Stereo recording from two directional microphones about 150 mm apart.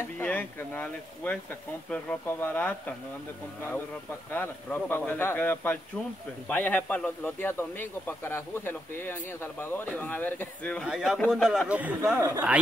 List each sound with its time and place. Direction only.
0.2 s speech: 10° left (ahead or behind)
4.3 s speech: 10° left (ahead or behind)
10.9 s a man's voice: 5° right (ahead or behind); by 12.4 s 20° right (ahead or behind)